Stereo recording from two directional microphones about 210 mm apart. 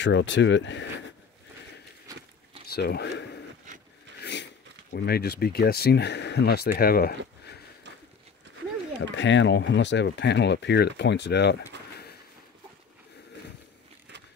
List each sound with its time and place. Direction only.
0.0 s speech: 60° left (ahead or behind)
2.6 s speech: 50° left (ahead or behind)
3.7 s a sound: 35° right (ahead or behind)
4.2 s a sound: 55° left (ahead or behind)
4.9 s speech: 50° left (ahead or behind)
9.1 s speech: 60° left (ahead or behind)